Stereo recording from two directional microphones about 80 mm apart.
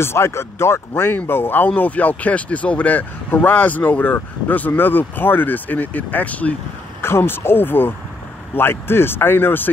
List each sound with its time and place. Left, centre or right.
0.0 s speech: left
7.0 s speech: left